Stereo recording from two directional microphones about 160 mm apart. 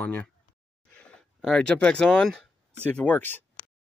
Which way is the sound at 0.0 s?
10° left (ahead or behind).